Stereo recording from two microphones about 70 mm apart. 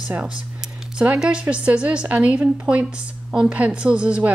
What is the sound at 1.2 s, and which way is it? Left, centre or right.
A woman's voice, centre.